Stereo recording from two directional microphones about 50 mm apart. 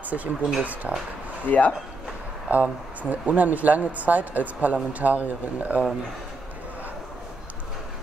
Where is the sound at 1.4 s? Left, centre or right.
Left.